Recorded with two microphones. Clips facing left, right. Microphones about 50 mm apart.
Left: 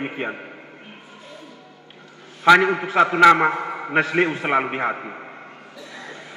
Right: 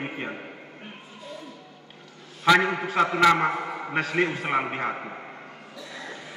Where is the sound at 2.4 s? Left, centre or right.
Left.